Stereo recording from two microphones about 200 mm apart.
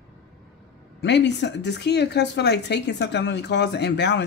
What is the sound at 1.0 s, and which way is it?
Speech, 60° left (ahead or behind).